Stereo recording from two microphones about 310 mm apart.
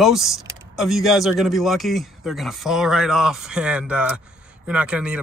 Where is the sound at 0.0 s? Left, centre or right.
Centre.